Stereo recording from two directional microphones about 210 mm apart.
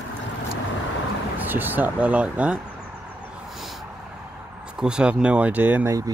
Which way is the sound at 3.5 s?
Centre (ahead or behind).